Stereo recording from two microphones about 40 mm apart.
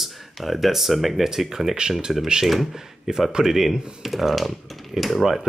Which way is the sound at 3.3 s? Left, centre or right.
Centre.